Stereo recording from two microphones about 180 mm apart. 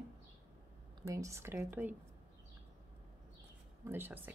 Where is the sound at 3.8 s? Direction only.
10° right (ahead or behind).